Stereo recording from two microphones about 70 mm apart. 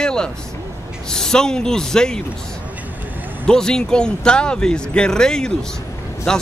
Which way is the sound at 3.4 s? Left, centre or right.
Centre.